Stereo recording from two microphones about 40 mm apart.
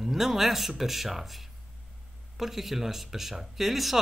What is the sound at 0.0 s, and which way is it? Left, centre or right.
Speech, centre.